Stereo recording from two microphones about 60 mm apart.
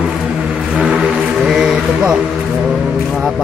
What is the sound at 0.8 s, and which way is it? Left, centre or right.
Mantra, centre.